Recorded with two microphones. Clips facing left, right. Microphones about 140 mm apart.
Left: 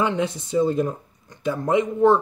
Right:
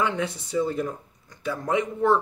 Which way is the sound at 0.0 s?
20° left (ahead or behind).